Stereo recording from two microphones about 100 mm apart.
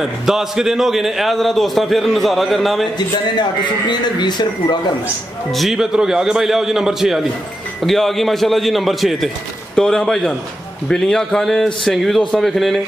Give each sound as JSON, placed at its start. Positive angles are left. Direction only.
{"t": 0.0, "sound": "a man's voice", "side_deg": -5}
{"t": 3.0, "sound": "a man's voice", "side_deg": 50}
{"t": 5.5, "sound": "a man's voice", "side_deg": 0}